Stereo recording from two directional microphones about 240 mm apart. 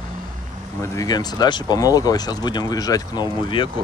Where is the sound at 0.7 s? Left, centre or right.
Centre.